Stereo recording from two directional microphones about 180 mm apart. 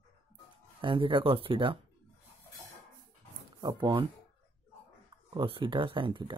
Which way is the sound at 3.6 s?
25° right (ahead or behind).